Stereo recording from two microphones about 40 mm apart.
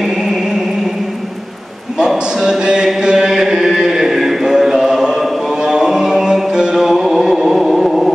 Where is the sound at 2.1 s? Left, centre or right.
Centre.